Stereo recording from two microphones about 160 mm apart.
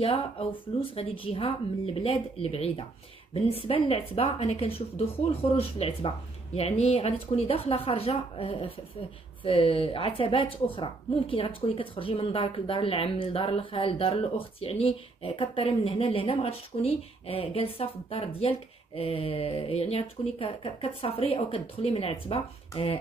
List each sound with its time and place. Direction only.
0.0 s a woman's voice: 35° left (ahead or behind)